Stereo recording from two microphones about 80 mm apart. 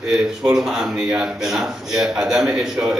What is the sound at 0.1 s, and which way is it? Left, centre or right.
A man's voice, centre.